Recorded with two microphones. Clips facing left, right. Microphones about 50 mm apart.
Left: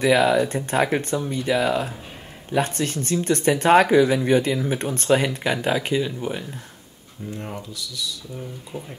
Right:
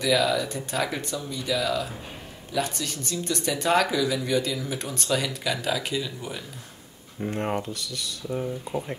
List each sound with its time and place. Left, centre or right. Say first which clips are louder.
0.0 s speech: left 5 dB; left
7.2 s speech: right 5 dB; right